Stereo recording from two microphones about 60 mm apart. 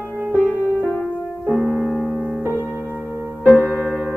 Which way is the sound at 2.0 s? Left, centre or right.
Right.